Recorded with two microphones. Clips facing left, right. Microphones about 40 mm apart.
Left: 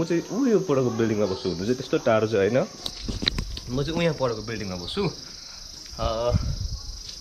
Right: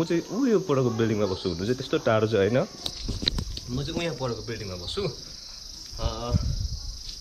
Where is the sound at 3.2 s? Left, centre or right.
Centre.